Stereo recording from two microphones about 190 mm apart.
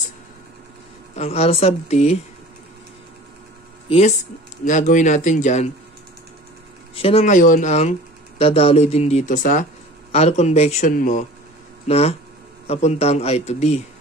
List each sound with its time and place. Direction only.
1.1 s speech: 35° left (ahead or behind)
4.6 s speech: 40° left (ahead or behind)
7.0 s speech: 30° left (ahead or behind)
11.9 s speech: 35° left (ahead or behind)